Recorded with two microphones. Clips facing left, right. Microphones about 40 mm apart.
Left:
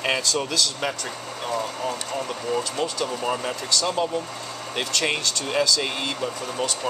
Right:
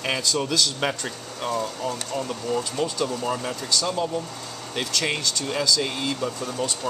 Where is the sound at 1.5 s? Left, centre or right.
Centre.